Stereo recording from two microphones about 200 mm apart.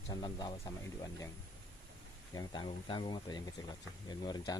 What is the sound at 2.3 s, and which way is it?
Speech, 20° left (ahead or behind).